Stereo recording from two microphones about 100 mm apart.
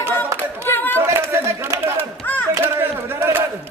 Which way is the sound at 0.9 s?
25° right (ahead or behind).